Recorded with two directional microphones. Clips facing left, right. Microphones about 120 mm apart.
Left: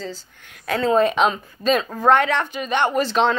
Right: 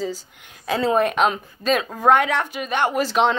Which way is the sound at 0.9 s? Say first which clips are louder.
Left 3 dB; 5° right (ahead or behind).